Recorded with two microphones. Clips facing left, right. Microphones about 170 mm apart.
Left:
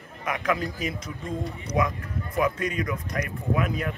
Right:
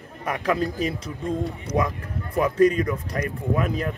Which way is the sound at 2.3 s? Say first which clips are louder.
Right 7 dB; 35° right (ahead or behind).